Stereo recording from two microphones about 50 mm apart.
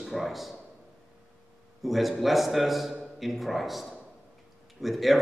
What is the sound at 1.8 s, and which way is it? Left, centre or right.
A man's voice, centre.